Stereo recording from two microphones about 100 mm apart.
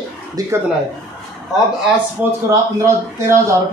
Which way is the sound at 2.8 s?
30° right (ahead or behind).